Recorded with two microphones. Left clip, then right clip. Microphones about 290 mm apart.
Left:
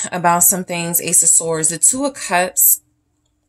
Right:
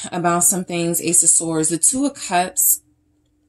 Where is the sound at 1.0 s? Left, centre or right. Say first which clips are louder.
Left 2 dB; left.